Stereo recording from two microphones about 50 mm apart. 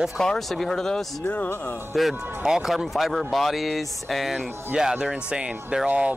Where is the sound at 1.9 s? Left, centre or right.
Centre.